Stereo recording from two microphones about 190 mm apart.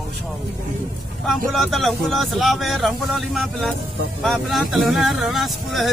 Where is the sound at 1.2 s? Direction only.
Centre (ahead or behind).